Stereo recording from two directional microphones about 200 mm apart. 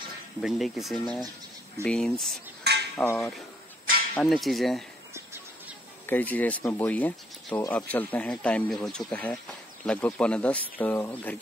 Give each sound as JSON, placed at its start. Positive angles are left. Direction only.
{"t": 0.4, "sound": "speech", "side_deg": 0}
{"t": 2.6, "sound": "dishes", "side_deg": -55}
{"t": 3.2, "sound": "speech", "side_deg": 0}
{"t": 6.0, "sound": "speech", "side_deg": 10}